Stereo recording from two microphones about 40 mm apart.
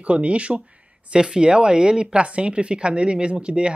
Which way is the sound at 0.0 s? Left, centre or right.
Right.